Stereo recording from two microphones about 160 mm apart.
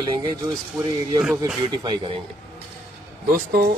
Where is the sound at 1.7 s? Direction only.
30° right (ahead or behind).